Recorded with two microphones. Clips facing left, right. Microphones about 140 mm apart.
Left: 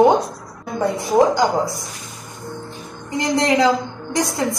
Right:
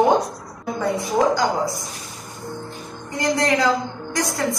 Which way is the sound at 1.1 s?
20° left (ahead or behind).